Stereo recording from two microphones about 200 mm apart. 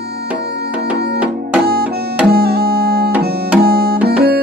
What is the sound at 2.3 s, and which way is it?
Music, 50° right (ahead or behind).